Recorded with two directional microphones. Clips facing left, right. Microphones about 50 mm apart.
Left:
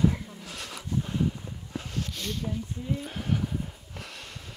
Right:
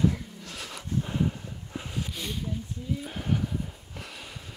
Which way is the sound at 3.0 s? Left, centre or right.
Centre.